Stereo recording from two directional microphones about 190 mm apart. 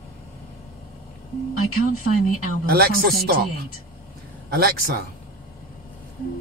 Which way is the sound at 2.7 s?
50° right (ahead or behind).